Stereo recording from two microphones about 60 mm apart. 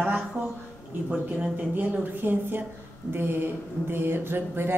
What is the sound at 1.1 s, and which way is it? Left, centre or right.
A man's voice, right.